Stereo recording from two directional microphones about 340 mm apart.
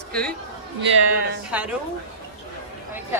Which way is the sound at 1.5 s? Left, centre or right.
Centre.